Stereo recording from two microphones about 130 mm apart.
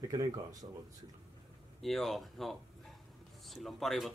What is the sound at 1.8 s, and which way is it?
Speech, centre (ahead or behind).